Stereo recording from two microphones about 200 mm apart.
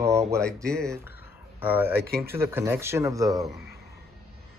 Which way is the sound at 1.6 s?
10° right (ahead or behind).